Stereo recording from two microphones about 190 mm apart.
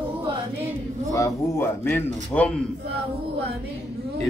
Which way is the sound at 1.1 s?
15° left (ahead or behind).